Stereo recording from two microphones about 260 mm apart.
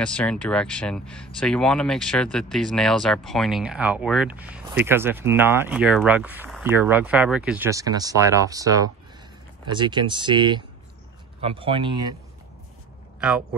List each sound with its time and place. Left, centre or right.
0.0 s speech: centre
13.2 s speech: centre